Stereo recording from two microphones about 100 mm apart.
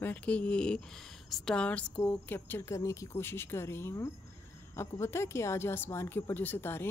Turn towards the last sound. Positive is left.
turn(degrees=25)  # may be behind; listen again after turning